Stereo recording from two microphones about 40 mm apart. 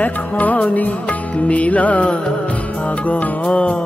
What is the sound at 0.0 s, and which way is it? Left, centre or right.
Music, left.